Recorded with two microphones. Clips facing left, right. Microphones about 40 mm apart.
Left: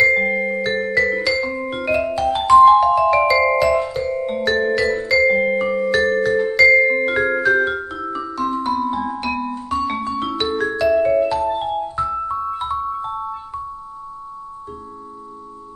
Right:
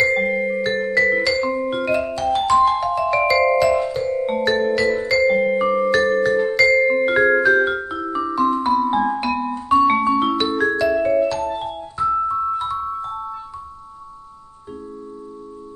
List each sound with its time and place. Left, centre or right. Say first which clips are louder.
0.0 s music: left 2 dB; centre